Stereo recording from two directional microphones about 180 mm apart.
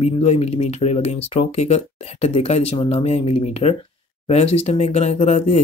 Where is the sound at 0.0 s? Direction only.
35° left (ahead or behind).